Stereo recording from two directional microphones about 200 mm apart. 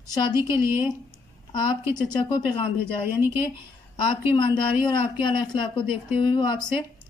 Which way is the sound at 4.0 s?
25° left (ahead or behind).